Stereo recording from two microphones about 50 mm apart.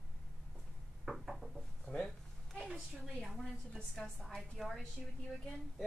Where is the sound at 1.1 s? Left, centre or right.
Centre.